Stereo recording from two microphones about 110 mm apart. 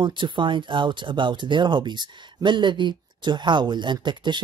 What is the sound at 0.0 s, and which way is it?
Speech, 45° right (ahead or behind).